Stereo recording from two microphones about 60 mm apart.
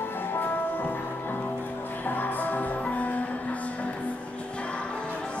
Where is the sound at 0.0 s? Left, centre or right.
Left.